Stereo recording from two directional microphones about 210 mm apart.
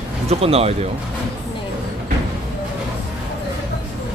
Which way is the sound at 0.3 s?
30° right (ahead or behind).